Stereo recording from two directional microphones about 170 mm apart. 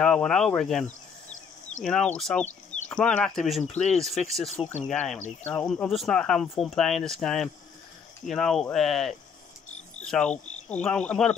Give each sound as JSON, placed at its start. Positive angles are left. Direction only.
{"t": 0.0, "sound": "speech", "side_deg": 5}